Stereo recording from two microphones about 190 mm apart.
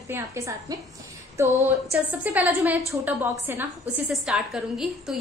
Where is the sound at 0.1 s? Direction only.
15° right (ahead or behind).